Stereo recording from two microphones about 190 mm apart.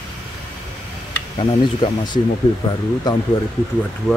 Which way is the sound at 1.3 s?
25° left (ahead or behind).